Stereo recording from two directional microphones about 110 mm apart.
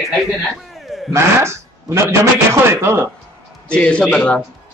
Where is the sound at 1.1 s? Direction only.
25° right (ahead or behind).